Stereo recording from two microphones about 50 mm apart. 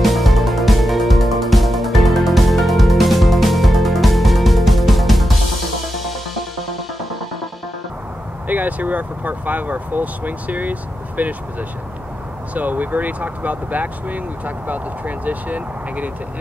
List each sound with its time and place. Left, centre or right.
0.0 s music: centre
8.5 s speech: right
12.5 s speech: right